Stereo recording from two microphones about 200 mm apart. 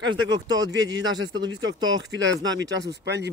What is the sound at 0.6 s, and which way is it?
Speech, 65° right (ahead or behind).